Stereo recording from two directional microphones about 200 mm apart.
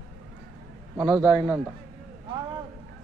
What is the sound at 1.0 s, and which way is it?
Speech, 5° right (ahead or behind).